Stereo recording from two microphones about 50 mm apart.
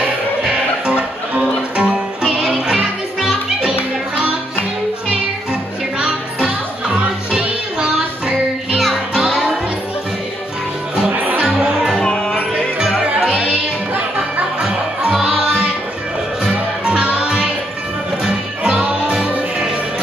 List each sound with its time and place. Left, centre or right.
1.4 s music: centre
5.1 s music: centre
8.7 s music: centre
11.1 s music: right
11.4 s music: centre
11.9 s music: centre
12.7 s music: centre
14.6 s music: centre
16.4 s music: centre